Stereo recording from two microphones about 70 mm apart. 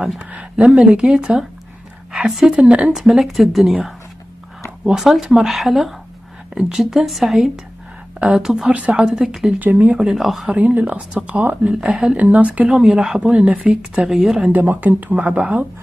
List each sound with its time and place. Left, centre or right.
0.2 s speech: centre
4.8 s speech: centre
6.5 s speech: centre
6.8 s speech: centre
8.7 s speech: centre
9.1 s speech: centre
9.6 s speech: right
9.9 s speech: centre
10.5 s speech: right
12.2 s speech: right
12.6 s speech: centre
14.5 s speech: right